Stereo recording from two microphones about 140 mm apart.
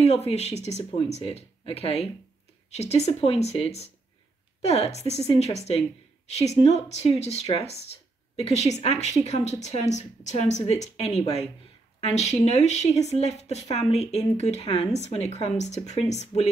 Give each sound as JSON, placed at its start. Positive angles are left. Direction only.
{"t": 0.0, "sound": "speech", "side_deg": 50}